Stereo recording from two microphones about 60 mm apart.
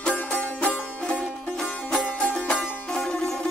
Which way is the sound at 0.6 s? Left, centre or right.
Centre.